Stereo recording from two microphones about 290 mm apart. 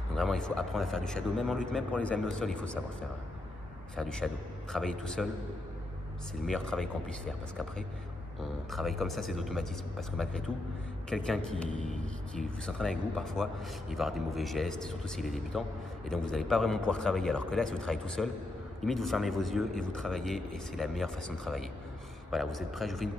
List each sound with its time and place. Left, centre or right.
0.1 s speech: centre
3.9 s speech: centre
6.4 s speech: centre